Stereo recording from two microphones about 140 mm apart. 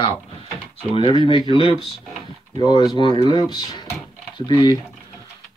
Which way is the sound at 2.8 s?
30° left (ahead or behind).